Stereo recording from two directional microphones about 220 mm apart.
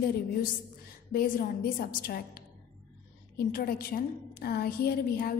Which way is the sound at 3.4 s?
45° left (ahead or behind).